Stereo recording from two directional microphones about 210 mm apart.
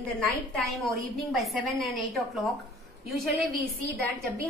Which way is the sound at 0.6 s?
Centre (ahead or behind).